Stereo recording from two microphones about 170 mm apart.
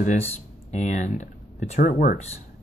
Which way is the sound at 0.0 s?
40° left (ahead or behind).